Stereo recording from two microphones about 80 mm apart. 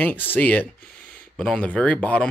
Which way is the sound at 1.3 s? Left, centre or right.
Centre.